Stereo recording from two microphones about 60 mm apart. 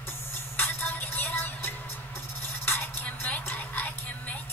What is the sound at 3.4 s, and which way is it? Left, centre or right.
Whispering, left.